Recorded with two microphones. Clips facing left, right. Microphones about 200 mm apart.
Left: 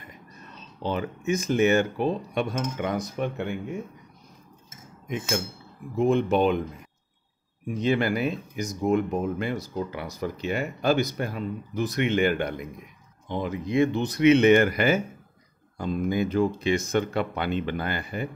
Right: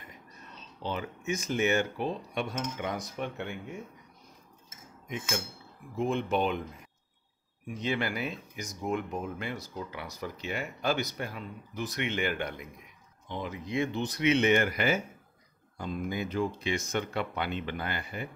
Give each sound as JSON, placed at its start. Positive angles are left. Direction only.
{"t": 0.8, "sound": "speech", "side_deg": 50}
{"t": 5.9, "sound": "speech", "side_deg": 50}
{"t": 7.8, "sound": "speech", "side_deg": 45}